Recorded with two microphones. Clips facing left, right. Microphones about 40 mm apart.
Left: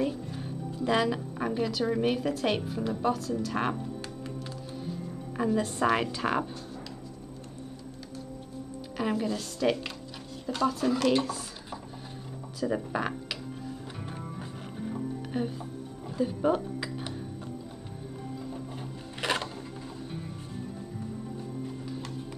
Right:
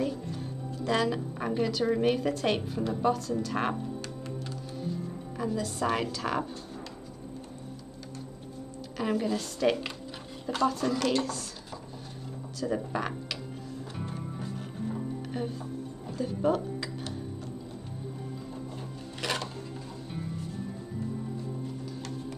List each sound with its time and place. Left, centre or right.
0.0 s speech: centre
5.4 s a woman's voice: left
5.9 s a woman's voice: centre
8.9 s a woman's voice: centre
12.5 s speech: centre
15.3 s a woman's voice: centre
16.2 s music: centre
18.8 s sewing machine: left